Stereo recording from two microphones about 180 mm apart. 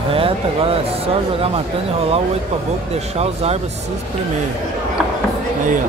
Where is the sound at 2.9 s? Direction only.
35° right (ahead or behind).